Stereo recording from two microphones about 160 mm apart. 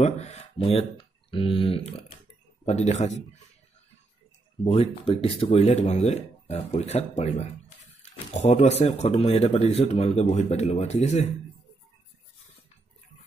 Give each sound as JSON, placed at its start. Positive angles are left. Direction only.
{"t": 0.0, "sound": "a sound", "side_deg": 45}
{"t": 0.7, "sound": "speech", "side_deg": 30}
{"t": 4.6, "sound": "speech", "side_deg": 40}